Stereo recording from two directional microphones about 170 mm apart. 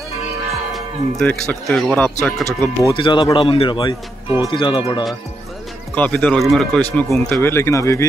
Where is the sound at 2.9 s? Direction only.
30° left (ahead or behind).